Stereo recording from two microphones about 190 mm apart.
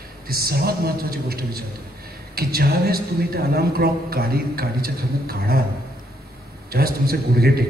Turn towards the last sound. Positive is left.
turn(degrees=-55)  # may be behind; listen again after turning